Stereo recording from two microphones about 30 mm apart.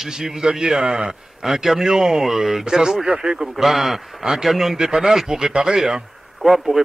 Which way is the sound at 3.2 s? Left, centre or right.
Right.